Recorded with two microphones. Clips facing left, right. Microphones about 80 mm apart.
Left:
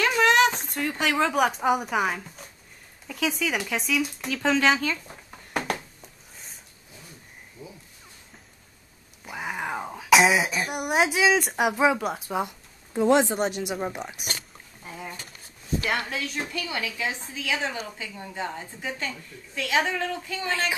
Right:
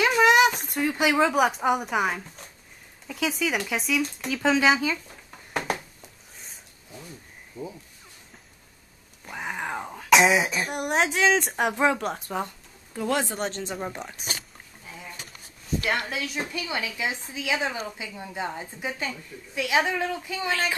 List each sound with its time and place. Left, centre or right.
0.0 s a sound: centre
3.1 s speech: centre
5.1 s a sound: centre
7.6 s frog: right
9.2 s speech: centre
12.9 s speech: left
16.1 s a woman's voice: centre